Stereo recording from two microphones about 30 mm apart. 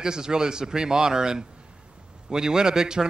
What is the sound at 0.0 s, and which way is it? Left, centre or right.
Speech, right.